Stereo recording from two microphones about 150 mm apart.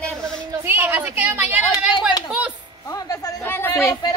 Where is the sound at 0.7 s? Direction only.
15° right (ahead or behind).